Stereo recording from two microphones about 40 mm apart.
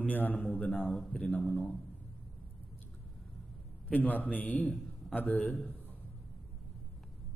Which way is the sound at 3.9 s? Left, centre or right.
Left.